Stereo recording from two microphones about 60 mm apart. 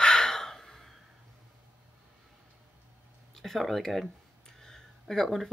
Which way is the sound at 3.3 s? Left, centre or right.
Centre.